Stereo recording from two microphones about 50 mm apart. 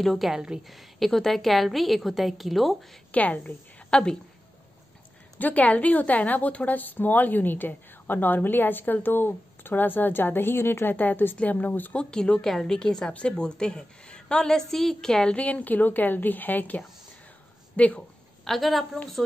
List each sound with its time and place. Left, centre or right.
0.0 s a woman's voice: centre
0.3 s a woman's voice: centre
0.7 s a woman's voice: centre
3.1 s a woman's voice: left
3.9 s a woman's voice: centre
5.4 s a woman's voice: left
11.9 s a woman's voice: centre
15.3 s a woman's voice: left
18.4 s a woman's voice: centre